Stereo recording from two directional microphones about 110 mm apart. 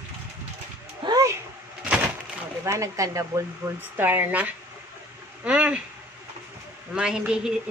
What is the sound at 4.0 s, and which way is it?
Speech, 15° right (ahead or behind).